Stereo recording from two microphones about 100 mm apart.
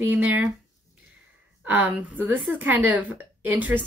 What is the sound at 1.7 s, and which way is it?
A woman's voice, 15° right (ahead or behind).